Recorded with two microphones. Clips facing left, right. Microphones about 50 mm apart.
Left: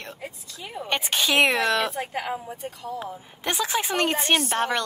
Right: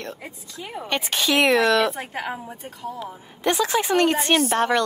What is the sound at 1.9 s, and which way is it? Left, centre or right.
Speech, centre.